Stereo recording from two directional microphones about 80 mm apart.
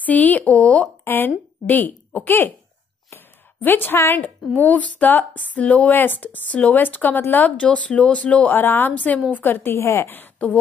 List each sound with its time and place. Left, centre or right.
0.0 s speech: centre
3.6 s speech: left
8.5 s speech: left